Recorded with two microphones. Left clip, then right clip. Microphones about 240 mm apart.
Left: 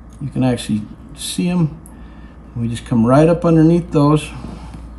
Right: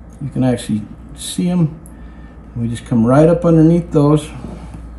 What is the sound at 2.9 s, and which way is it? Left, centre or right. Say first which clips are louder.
Speech: right 1 dB; centre.